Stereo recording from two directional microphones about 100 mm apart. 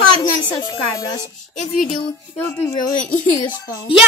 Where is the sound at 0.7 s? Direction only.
35° left (ahead or behind).